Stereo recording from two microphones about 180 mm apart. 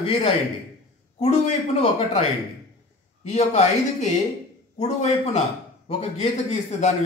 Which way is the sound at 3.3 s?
40° left (ahead or behind).